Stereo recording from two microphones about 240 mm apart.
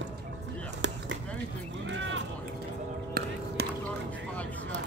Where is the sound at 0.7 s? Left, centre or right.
Right.